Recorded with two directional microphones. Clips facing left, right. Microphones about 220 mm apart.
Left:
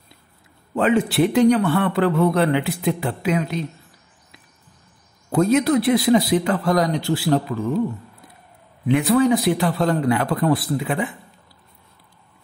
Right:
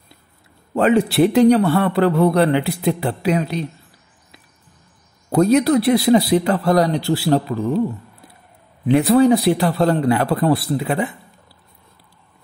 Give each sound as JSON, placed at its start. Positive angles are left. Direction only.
{"t": 0.7, "sound": "speech", "side_deg": -40}
{"t": 5.3, "sound": "speech", "side_deg": -40}
{"t": 8.8, "sound": "speech", "side_deg": -35}